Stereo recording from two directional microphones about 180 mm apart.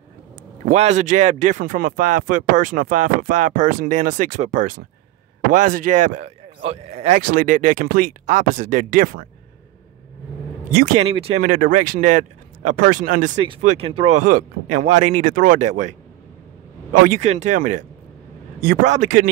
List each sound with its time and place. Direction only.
0.7 s speech: 40° right (ahead or behind)
7.2 s speech: 50° right (ahead or behind)
11.0 s speech: 35° right (ahead or behind)
13.6 s speech: 35° right (ahead or behind)
17.0 s speech: 45° right (ahead or behind)
18.9 s speech: 45° right (ahead or behind)